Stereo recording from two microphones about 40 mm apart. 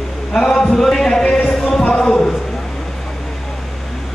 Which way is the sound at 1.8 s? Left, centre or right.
Centre.